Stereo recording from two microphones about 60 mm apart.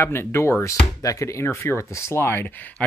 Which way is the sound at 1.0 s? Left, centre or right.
Left.